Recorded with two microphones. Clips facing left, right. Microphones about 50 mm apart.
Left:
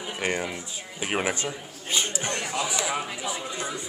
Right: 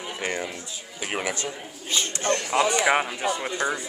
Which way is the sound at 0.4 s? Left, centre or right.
Centre.